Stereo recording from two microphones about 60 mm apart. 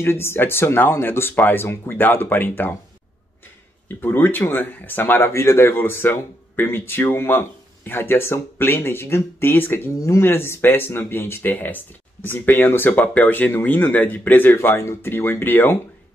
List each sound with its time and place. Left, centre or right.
0.0 s speech: left
4.0 s speech: left